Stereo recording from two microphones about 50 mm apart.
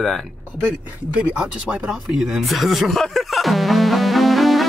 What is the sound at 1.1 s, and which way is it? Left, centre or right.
Speech, right.